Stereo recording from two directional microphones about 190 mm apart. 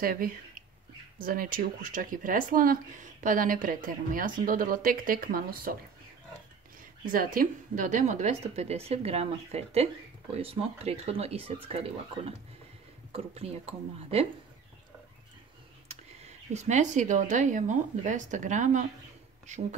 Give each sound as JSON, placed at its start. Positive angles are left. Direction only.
{"t": 0.0, "sound": "speech", "side_deg": -50}
{"t": 7.1, "sound": "speech", "side_deg": -45}
{"t": 15.9, "sound": "speech", "side_deg": -35}